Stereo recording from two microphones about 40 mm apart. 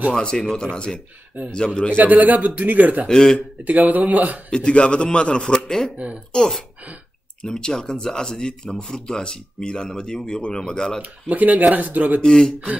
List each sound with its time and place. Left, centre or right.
0.1 s speech: left
2.0 s speech: right
3.1 s speech: centre
3.6 s speech: right
4.5 s speech: left
6.0 s a woman's voice: right
6.3 s speech: centre
11.0 s speech: right
12.2 s speech: centre